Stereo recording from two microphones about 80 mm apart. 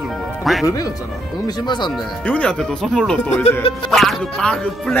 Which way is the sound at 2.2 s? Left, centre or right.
Centre.